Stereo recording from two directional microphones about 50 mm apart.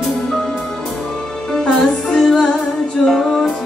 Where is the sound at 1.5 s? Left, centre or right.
Centre.